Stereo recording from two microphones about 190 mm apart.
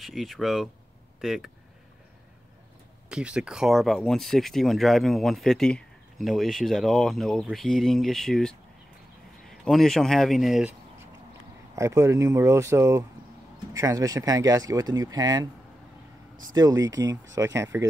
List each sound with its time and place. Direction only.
0.0 s speech: centre (ahead or behind)
3.1 s speech: 5° right (ahead or behind)
11.7 s speech: 15° right (ahead or behind)
16.5 s speech: 20° right (ahead or behind)